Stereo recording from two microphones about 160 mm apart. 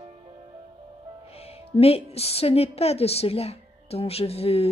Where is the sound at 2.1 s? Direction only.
40° left (ahead or behind).